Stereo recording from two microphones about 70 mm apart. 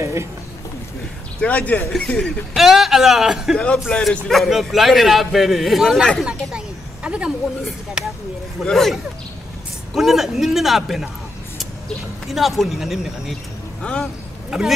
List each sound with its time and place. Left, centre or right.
0.0 s a sound: right
1.4 s speech: left
2.2 s a man's voice: centre
3.5 s speech: centre
4.3 s a man's voice: centre
6.2 s a sound: centre
8.0 s a man's voice: centre
8.6 s a man's voice: centre
12.3 s a man's voice: centre
13.9 s speech: centre
14.5 s a man's voice: centre